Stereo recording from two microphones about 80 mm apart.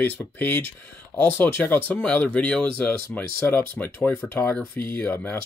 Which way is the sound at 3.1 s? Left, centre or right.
Left.